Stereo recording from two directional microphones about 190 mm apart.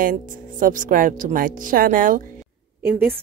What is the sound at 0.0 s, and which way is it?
Speech, 45° right (ahead or behind).